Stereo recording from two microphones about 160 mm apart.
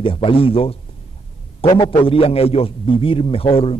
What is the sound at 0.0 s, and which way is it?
A man's voice, 35° left (ahead or behind).